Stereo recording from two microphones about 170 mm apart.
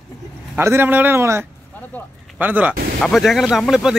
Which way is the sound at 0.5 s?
15° right (ahead or behind).